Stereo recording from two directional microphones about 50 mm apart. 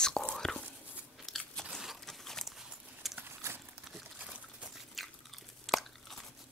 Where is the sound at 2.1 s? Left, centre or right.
Centre.